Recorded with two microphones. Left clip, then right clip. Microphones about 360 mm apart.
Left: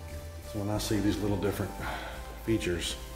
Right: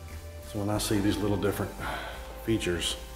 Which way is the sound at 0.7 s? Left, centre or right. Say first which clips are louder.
Right 2 dB; centre.